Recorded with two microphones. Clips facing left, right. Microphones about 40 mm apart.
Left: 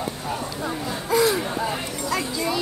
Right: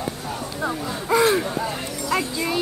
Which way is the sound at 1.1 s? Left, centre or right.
Right.